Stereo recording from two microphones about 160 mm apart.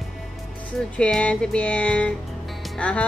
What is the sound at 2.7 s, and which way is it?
Music, 5° left (ahead or behind).